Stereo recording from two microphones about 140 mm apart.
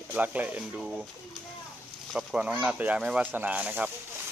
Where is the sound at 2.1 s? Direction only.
10° right (ahead or behind).